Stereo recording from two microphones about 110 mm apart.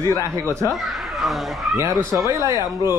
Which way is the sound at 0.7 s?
Centre (ahead or behind).